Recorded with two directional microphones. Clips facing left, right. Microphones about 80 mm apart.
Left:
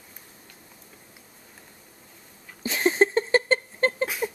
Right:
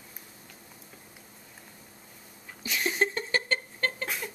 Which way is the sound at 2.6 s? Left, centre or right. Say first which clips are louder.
Left 7 dB; left.